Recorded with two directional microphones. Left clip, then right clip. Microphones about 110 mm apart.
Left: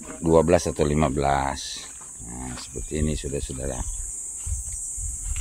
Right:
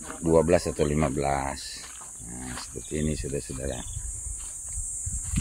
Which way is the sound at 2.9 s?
40° left (ahead or behind).